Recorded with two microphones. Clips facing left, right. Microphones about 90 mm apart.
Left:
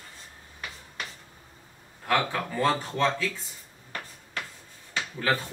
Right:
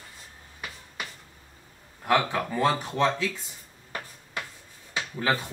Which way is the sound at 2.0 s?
15° right (ahead or behind).